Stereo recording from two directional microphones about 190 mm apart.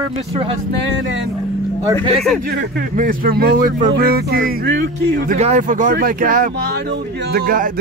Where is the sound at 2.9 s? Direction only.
45° right (ahead or behind).